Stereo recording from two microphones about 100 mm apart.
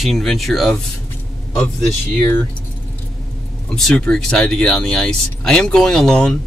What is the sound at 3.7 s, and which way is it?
Speech, 10° left (ahead or behind).